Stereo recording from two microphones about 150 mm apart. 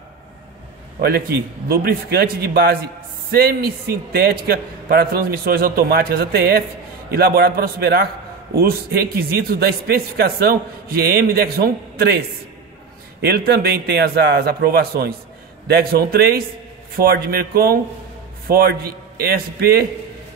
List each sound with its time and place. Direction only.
1.7 s a man's voice: 90° right
13.2 s a man's voice: 90° right